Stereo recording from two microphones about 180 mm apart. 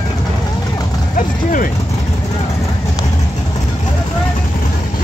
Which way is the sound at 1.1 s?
50° left (ahead or behind).